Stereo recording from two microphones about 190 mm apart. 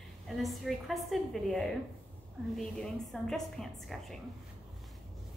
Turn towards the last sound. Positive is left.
turn(degrees=0)  # may be behind; listen again after turning